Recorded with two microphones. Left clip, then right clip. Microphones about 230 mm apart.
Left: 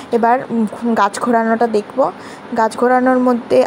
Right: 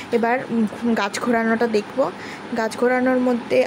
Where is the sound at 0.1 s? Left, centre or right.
Centre.